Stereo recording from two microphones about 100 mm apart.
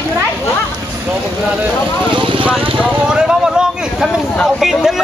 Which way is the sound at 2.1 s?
55° right (ahead or behind).